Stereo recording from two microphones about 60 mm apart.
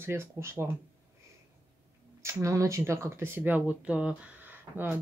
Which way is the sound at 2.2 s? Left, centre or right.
Right.